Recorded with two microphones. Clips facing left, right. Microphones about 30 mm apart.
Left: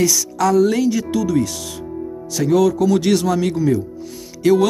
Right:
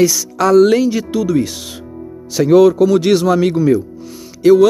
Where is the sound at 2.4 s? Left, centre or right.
Right.